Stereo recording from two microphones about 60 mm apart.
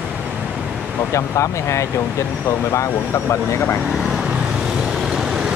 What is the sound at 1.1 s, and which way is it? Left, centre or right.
Speech, left.